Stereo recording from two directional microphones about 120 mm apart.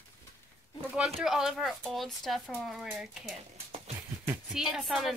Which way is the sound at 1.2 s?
5° right (ahead or behind).